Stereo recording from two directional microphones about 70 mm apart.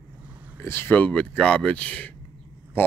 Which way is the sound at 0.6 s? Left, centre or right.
Left.